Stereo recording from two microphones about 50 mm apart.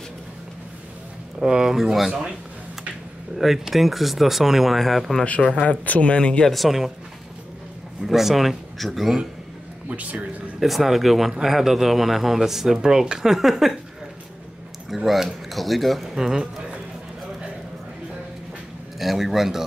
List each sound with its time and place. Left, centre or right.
1.4 s speech: centre
3.3 s speech: centre
5.2 s speech: left
6.4 s speech: centre
8.0 s speech: centre
9.8 s speech: right
10.6 s speech: centre
15.0 s speech: centre
18.9 s speech: centre